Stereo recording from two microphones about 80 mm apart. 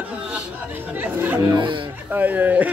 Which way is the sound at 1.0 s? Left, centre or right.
Right.